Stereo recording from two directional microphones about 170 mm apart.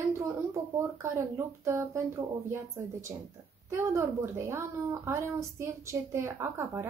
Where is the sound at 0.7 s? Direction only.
15° right (ahead or behind).